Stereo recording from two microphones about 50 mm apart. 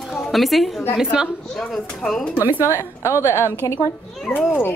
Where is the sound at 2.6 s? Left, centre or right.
Left.